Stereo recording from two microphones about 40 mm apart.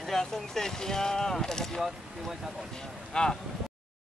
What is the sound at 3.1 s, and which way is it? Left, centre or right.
Speech, centre.